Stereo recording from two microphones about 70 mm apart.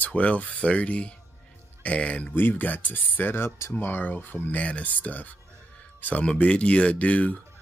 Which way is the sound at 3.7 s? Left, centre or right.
Left.